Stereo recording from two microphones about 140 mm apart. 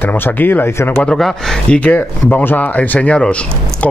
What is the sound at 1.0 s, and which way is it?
Speech, 5° left (ahead or behind).